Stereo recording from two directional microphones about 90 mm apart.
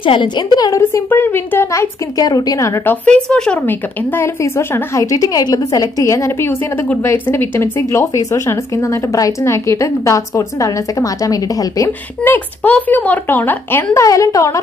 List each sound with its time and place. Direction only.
0.0 s a woman's voice: 70° left (ahead or behind)
0.6 s speech: 40° left (ahead or behind)
2.8 s speech: 20° left (ahead or behind)
3.2 s speech: 5° left (ahead or behind)
3.5 s speech: 25° left (ahead or behind); by 11.9 s 40° left (ahead or behind)
12.3 s speech: 15° left (ahead or behind)
13.9 s speech: 40° left (ahead or behind)